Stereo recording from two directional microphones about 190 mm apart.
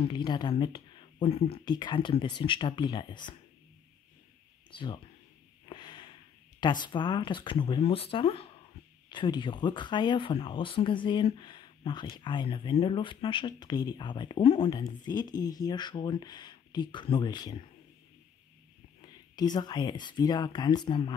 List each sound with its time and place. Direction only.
0.1 s speech: 25° left (ahead or behind)
4.6 s speech: 25° left (ahead or behind)
5.7 s snort: 25° left (ahead or behind)
6.6 s speech: 25° left (ahead or behind)
18.9 s speech: 20° left (ahead or behind)